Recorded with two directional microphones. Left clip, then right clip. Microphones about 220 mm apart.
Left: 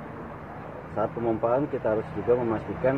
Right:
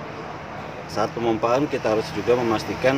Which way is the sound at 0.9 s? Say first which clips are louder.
Right 4 dB; 15° right (ahead or behind).